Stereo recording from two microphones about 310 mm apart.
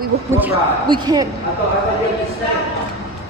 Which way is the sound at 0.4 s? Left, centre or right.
Centre.